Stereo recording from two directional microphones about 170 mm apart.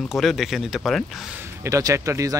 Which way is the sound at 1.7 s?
20° right (ahead or behind).